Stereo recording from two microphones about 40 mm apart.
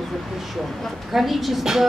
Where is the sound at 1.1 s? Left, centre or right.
Centre.